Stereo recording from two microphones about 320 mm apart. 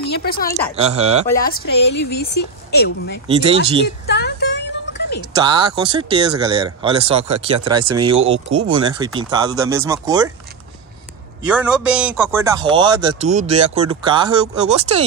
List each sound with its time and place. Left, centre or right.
0.0 s speech: left
0.7 s speech: centre
1.4 s speech: left
3.3 s speech: centre
4.0 s a sound: left
5.4 s speech: centre
11.4 s a man's voice: centre